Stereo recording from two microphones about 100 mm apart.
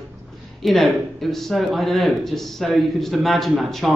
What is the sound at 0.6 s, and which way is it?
A man's voice, centre (ahead or behind).